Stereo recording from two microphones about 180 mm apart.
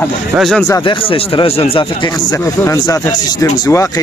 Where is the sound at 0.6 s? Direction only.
20° left (ahead or behind).